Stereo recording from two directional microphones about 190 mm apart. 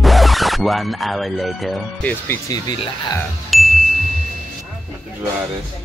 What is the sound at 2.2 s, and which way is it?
Speech, 15° left (ahead or behind).